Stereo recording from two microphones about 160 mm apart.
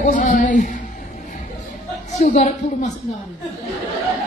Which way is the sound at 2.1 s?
50° left (ahead or behind).